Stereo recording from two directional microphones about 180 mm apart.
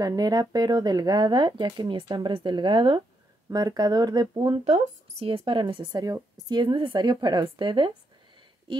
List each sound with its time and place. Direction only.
0.0 s speech: 20° right (ahead or behind)